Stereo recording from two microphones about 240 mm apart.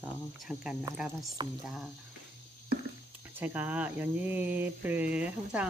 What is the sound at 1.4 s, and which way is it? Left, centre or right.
Speech, centre.